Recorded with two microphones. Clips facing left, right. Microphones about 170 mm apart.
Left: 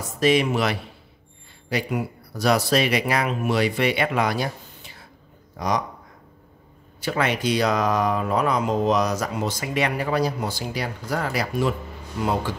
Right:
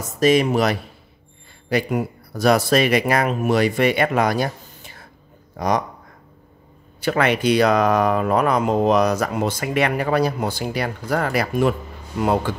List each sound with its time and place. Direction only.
0.2 s speech: 45° right (ahead or behind)
7.0 s speech: 60° right (ahead or behind)